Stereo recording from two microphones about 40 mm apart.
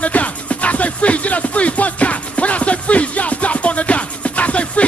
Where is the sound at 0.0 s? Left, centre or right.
Left.